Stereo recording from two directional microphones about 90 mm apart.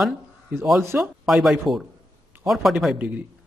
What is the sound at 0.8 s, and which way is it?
Speech, 30° right (ahead or behind).